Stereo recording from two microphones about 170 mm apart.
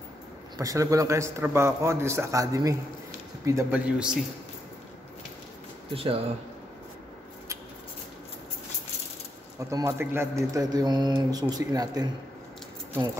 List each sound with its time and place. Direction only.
0.6 s a man's voice: 20° right (ahead or behind)
5.9 s speech: 35° right (ahead or behind)
9.6 s a man's voice: 20° right (ahead or behind)